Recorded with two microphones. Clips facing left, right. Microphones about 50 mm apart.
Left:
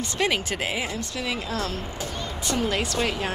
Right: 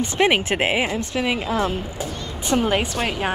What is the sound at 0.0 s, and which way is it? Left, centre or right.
Speech, right.